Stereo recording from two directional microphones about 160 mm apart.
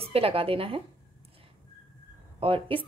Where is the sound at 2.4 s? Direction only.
35° right (ahead or behind).